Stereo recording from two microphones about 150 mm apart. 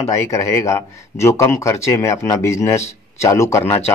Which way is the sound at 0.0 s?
20° left (ahead or behind).